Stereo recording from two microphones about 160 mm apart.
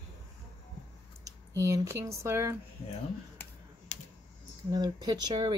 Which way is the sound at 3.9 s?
50° left (ahead or behind).